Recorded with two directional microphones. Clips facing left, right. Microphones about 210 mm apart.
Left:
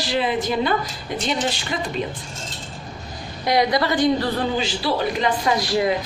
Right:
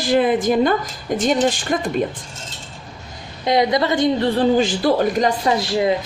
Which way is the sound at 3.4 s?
20° right (ahead or behind).